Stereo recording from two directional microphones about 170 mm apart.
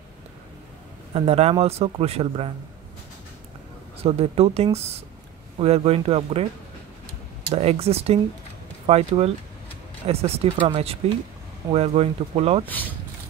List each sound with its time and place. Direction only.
1.1 s speech: 35° right (ahead or behind)
4.0 s speech: 35° right (ahead or behind)
7.5 s speech: 35° right (ahead or behind)
12.6 s speech: 10° left (ahead or behind)